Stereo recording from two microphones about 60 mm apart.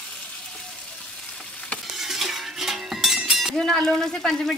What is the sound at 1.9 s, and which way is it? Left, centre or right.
Music, centre.